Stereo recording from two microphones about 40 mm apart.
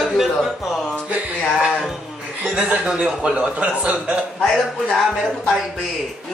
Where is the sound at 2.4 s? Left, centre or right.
Right.